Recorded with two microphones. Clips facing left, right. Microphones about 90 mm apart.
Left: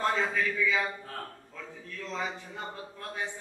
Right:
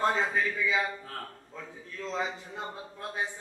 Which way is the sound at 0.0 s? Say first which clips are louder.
Right 1 dB; 20° right (ahead or behind).